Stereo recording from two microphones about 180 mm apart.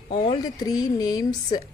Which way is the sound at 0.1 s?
30° left (ahead or behind).